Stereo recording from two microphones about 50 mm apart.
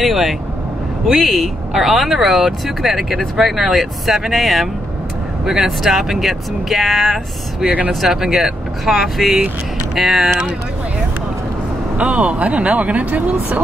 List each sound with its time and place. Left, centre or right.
0.0 s speech: centre
7.6 s speech: right
7.9 s speech: centre
12.0 s speech: right